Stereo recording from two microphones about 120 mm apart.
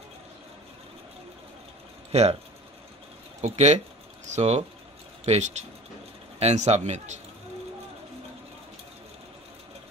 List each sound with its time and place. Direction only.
2.1 s speech: 65° right (ahead or behind)
3.3 s speech: 70° right (ahead or behind)